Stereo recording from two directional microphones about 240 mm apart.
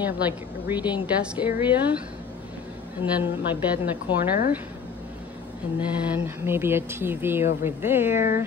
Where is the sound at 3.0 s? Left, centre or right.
Left.